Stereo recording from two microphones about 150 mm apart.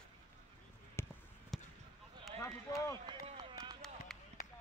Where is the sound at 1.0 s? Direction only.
15° left (ahead or behind).